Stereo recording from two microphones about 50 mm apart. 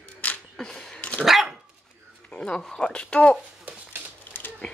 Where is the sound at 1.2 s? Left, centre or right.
Centre.